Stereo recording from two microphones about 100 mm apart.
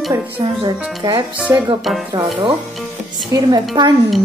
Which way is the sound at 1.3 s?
15° right (ahead or behind).